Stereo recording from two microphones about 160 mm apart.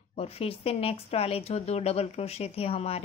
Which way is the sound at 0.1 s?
40° left (ahead or behind).